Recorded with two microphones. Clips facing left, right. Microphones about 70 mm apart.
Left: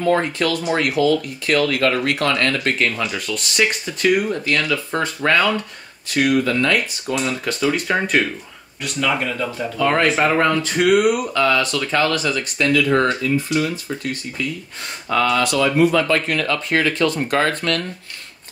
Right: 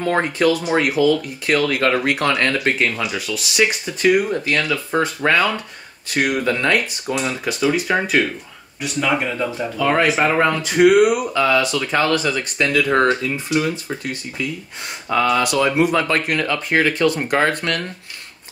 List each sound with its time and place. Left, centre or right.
0.2 s speech: centre
2.5 s speech: centre
6.1 s speech: centre
7.1 s speech: centre
8.8 s speech: centre
9.8 s speech: centre; by 12.8 s right
14.4 s speech: centre